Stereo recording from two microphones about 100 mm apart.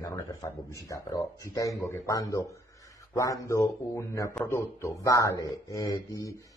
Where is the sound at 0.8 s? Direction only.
35° left (ahead or behind).